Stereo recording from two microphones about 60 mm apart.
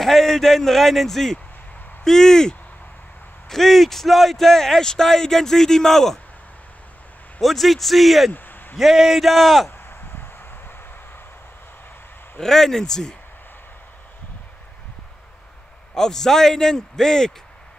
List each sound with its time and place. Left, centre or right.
0.0 s a man's voice: centre
7.3 s a man's voice: centre
8.3 s a sound: left
8.7 s a man's voice: centre
9.7 s a sound: left
12.4 s a man's voice: centre
15.9 s a man's voice: centre